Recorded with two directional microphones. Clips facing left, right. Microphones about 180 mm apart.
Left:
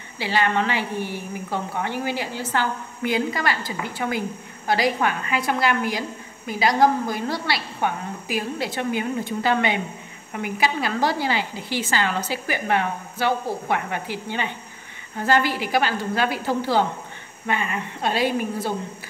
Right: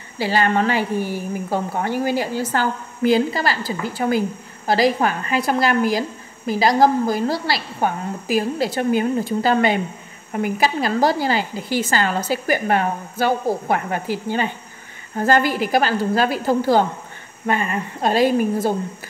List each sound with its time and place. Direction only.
0.2 s a woman's voice: 40° right (ahead or behind)